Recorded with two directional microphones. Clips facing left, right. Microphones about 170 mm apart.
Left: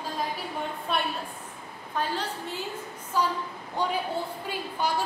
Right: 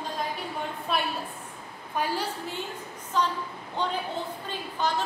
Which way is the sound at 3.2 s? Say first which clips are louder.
Even; 10° left (ahead or behind).